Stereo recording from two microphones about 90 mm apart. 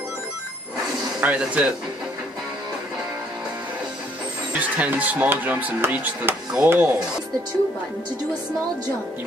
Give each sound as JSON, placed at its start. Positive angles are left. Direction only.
{"t": 1.2, "sound": "speech", "side_deg": -15}
{"t": 4.6, "sound": "speech", "side_deg": -15}